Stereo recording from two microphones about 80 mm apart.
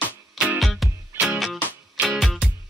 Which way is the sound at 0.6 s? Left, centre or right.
Centre.